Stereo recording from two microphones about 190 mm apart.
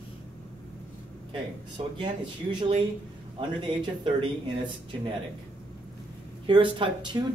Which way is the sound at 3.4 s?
25° right (ahead or behind).